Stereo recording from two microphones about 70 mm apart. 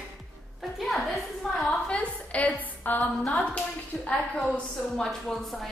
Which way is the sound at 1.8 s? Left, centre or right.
Centre.